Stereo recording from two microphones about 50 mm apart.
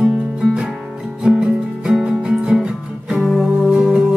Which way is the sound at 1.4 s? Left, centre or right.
Centre.